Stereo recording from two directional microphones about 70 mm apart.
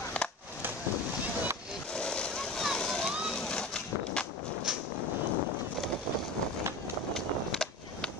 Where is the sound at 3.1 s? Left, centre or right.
Centre.